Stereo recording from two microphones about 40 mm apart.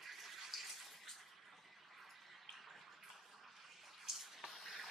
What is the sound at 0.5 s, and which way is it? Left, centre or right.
Bathtub, centre.